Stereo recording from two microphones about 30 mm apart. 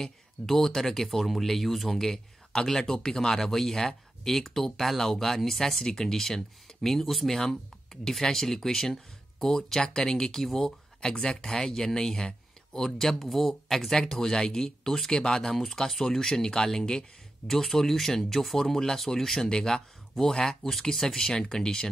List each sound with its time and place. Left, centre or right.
0.0 s speech: centre
2.6 s speech: centre
5.9 s speech: centre
11.0 s speech: left
13.2 s speech: centre
14.0 s speech: centre
15.1 s speech: left
15.4 s speech: centre